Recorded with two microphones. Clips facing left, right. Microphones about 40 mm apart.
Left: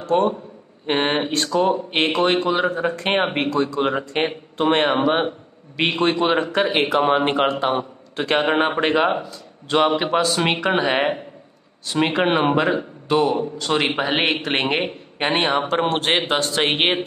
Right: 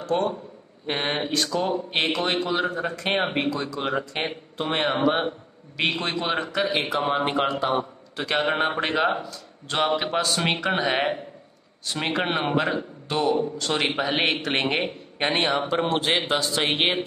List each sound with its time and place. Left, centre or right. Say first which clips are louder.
0.1 s a man's voice: left 6 dB; centre; by 4.8 s left
4.8 s a man's voice: left 4 dB; left
6.5 s speech: left 6 dB; left
7.1 s speech: left 5 dB; left
8.3 s a man's voice: left 4 dB; left
15.5 s speech: left 3 dB; left